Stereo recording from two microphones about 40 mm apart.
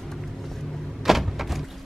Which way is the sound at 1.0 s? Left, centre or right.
Centre.